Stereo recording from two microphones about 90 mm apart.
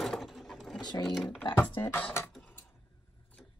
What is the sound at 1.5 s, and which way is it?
Speech, 25° left (ahead or behind).